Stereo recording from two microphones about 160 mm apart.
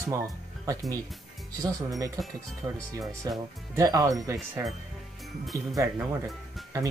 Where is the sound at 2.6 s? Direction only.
20° right (ahead or behind).